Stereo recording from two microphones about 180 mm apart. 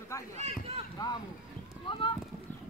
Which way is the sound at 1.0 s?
20° left (ahead or behind).